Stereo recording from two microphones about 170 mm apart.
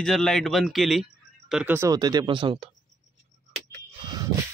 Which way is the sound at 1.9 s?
25° right (ahead or behind).